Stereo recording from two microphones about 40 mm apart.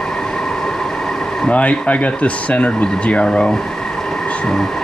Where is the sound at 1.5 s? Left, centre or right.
Left; by 4.3 s centre.